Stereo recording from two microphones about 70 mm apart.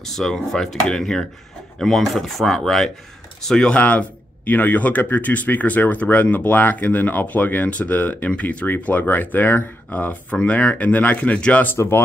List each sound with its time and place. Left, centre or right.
0.0 s speech: centre
11.6 s speech: left